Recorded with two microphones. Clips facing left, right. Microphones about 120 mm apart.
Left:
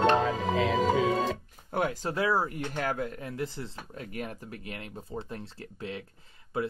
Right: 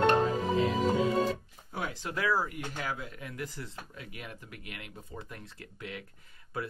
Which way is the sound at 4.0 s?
45° left (ahead or behind).